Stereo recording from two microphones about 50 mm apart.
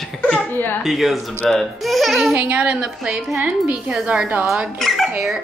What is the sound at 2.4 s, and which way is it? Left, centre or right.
Speech, right.